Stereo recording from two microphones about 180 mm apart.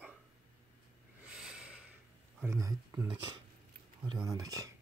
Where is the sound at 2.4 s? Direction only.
15° right (ahead or behind).